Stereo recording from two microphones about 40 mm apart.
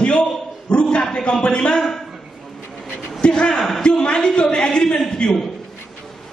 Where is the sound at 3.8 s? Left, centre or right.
Left.